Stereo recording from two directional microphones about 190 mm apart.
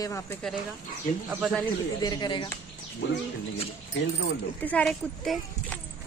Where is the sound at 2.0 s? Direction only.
25° left (ahead or behind).